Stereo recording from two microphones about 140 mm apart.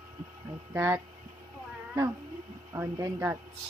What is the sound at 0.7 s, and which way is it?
Speech, 15° right (ahead or behind).